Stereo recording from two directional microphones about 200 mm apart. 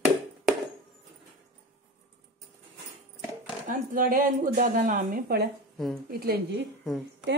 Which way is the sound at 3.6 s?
45° right (ahead or behind).